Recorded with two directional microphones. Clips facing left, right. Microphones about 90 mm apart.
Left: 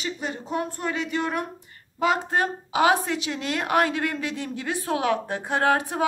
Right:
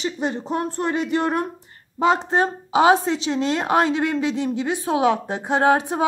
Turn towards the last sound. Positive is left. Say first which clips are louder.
# right 4 dB
turn(degrees=-20)  # may be behind; listen again after turning